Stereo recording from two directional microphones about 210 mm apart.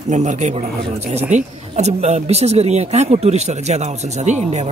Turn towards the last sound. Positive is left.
turn(degrees=-35)  # may be behind; listen again after turning